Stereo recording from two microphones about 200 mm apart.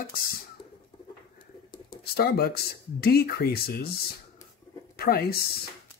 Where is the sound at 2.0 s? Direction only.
50° left (ahead or behind).